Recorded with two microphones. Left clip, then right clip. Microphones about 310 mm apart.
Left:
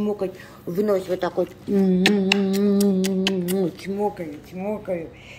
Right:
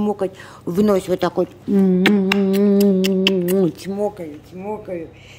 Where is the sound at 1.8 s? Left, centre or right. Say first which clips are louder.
Right 4 dB; right.